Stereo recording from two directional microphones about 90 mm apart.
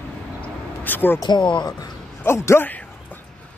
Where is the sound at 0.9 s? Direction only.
20° left (ahead or behind).